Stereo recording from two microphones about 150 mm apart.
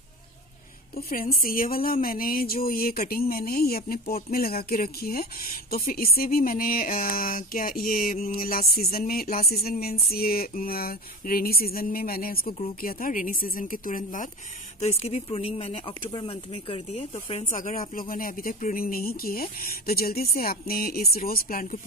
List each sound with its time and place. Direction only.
0.9 s speech: 75° left (ahead or behind)
14.8 s speech: 45° left (ahead or behind); by 21.7 s 70° left (ahead or behind)